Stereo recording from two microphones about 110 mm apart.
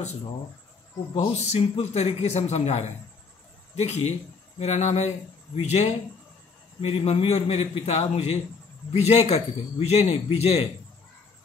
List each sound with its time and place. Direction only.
1.1 s a man's voice: 90° left
5.6 s a man's voice: 75° left (ahead or behind)